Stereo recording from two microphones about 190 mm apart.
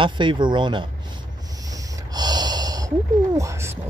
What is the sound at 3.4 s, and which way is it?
Speech, 15° right (ahead or behind).